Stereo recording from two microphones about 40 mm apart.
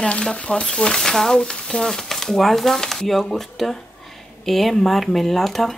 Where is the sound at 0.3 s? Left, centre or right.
Left.